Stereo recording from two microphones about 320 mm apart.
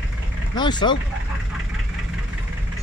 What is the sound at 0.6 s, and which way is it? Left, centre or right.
Speech, centre.